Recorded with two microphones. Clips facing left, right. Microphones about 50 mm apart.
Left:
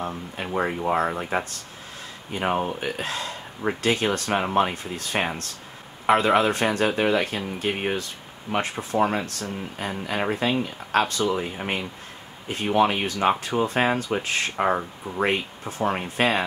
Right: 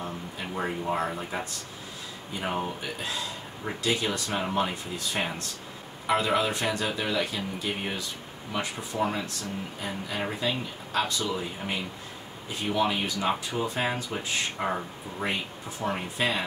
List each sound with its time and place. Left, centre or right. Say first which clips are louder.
0.0 s speech: left 5 dB; left